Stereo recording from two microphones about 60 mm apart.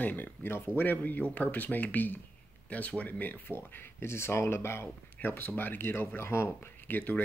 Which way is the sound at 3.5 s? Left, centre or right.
Left.